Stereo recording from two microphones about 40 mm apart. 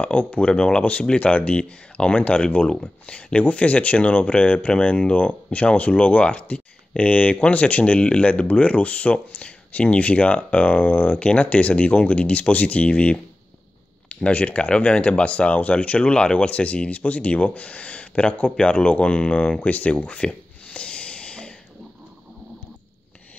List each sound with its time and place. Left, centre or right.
0.0 s speech: left
0.5 s speech: left
3.4 s speech: left
11.1 s speech: left
19.6 s a sound: left